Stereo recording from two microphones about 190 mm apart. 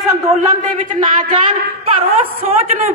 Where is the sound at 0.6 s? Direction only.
40° right (ahead or behind).